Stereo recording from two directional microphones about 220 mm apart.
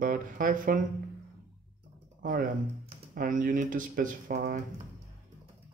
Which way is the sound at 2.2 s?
40° right (ahead or behind).